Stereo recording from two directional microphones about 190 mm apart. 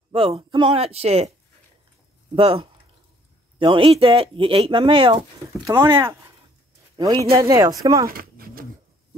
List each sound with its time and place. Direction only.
0.1 s speech: 30° right (ahead or behind)
2.3 s speech: 30° right (ahead or behind)
5.7 s a man's voice: 15° right (ahead or behind)
8.1 s a sound: 50° right (ahead or behind)